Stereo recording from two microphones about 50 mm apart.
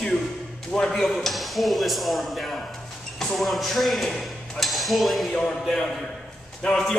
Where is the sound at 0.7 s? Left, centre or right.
Centre.